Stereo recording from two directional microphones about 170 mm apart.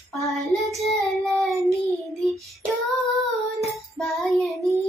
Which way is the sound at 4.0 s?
Centre (ahead or behind).